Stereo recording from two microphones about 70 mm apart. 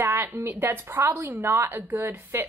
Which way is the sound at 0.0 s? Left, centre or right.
Right.